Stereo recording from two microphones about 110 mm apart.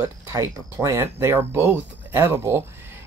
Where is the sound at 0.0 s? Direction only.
25° right (ahead or behind).